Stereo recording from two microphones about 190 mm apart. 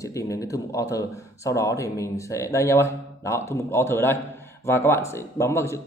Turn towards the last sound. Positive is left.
turn(degrees=15)  # may be behind; listen again after turning